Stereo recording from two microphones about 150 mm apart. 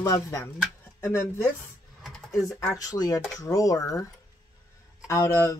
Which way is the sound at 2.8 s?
25° left (ahead or behind).